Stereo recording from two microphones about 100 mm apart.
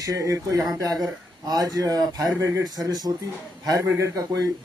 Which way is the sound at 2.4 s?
30° right (ahead or behind).